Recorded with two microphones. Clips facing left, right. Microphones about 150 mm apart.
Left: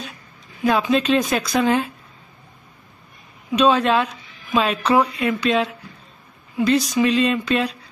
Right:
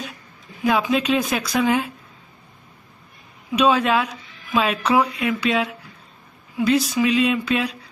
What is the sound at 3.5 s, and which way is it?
Speech, 10° right (ahead or behind).